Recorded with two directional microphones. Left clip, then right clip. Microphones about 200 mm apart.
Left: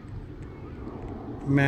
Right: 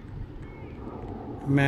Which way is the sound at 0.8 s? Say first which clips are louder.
Right 1 dB; 25° right (ahead or behind).